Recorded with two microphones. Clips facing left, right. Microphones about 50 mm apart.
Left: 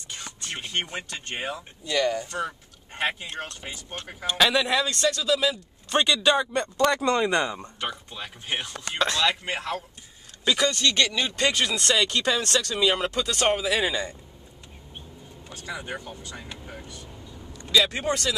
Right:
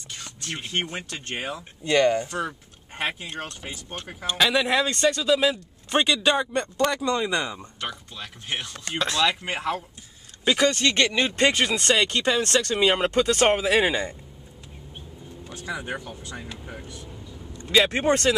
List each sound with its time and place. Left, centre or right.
0.1 s a sound: centre
0.6 s speech: centre
1.9 s speech: right
2.3 s speech: centre
4.6 s a man's voice: right; by 7.0 s centre
7.0 s speech: left
7.8 s speech: centre
10.4 s a man's voice: right
12.6 s speech: right
15.4 s speech: centre
17.5 s vehicle: right